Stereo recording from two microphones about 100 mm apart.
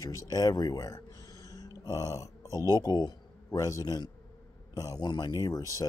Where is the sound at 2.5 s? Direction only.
35° right (ahead or behind).